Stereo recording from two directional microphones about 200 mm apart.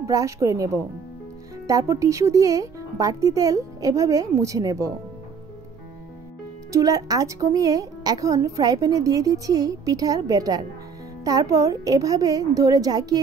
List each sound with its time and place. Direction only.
0.0 s speech: 15° right (ahead or behind)
1.7 s speech: 15° right (ahead or behind)
6.7 s speech: 15° right (ahead or behind)